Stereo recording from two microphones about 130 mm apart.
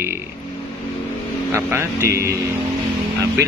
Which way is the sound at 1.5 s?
20° right (ahead or behind).